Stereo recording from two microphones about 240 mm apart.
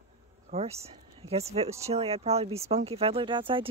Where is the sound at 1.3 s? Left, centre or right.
Right.